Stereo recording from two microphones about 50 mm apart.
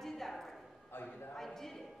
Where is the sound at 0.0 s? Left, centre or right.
Centre.